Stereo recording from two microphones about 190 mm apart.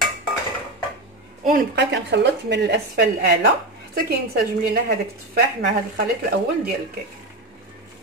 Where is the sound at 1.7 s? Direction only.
60° right (ahead or behind).